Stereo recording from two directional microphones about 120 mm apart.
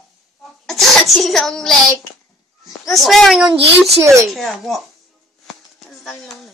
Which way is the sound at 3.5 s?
55° right (ahead or behind).